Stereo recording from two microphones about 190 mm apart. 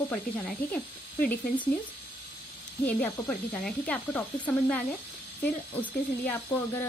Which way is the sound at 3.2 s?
5° left (ahead or behind).